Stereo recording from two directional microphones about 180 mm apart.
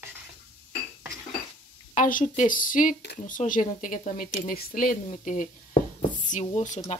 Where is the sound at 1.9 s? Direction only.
50° left (ahead or behind).